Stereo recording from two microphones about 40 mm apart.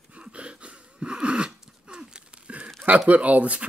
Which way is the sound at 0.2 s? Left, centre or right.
Right.